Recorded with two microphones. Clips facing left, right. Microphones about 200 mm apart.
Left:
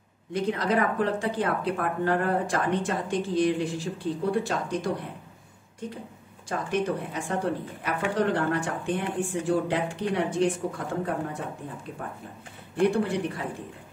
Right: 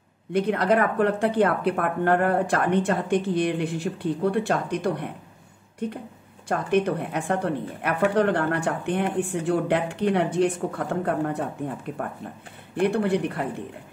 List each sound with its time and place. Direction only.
0.3 s a woman's voice: 60° right (ahead or behind)